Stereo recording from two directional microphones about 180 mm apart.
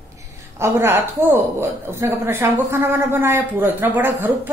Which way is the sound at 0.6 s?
15° right (ahead or behind).